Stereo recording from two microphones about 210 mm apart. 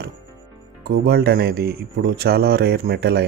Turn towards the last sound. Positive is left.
turn(degrees=-50)  # may be behind; listen again after turning